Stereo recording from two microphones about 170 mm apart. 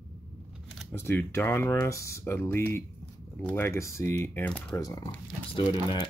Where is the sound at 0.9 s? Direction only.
15° left (ahead or behind).